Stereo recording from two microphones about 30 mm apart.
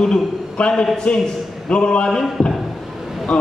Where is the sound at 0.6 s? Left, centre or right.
Left.